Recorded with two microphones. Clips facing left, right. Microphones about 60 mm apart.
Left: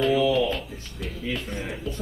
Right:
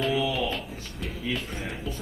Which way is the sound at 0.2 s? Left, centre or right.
Centre.